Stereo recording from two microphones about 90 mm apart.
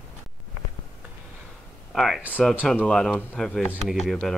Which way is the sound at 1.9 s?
Centre (ahead or behind).